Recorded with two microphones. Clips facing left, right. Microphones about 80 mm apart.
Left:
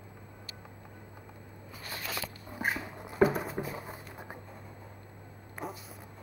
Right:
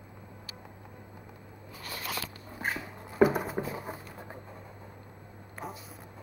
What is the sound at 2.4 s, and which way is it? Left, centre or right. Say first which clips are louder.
Cat: left 2 dB; centre.